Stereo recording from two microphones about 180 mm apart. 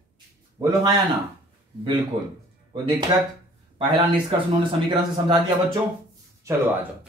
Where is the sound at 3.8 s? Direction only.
25° right (ahead or behind).